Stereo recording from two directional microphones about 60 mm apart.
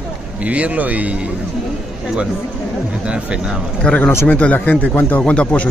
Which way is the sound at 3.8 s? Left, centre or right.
Centre.